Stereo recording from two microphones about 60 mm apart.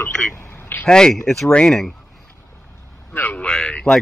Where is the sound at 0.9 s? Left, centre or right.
Centre.